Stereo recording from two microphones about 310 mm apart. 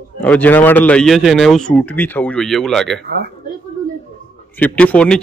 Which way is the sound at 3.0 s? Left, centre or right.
Right.